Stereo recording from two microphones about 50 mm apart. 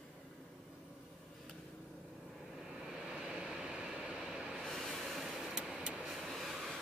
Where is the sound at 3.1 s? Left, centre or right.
Centre.